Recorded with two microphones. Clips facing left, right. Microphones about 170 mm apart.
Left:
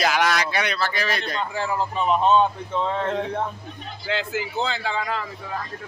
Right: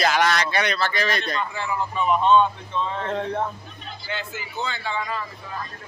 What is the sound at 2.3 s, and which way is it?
Speech, 55° left (ahead or behind).